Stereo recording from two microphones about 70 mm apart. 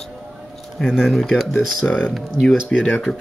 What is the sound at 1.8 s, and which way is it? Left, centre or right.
Speech, centre.